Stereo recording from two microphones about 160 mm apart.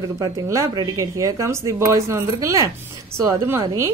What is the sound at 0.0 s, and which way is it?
A woman's voice, 25° right (ahead or behind).